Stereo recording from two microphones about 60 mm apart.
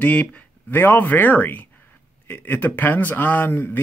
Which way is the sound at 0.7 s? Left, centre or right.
Left.